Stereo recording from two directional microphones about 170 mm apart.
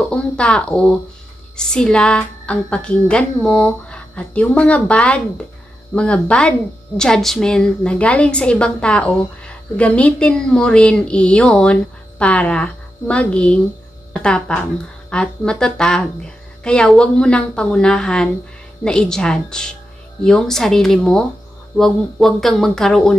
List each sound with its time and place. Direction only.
0.1 s a woman's voice: 5° left (ahead or behind)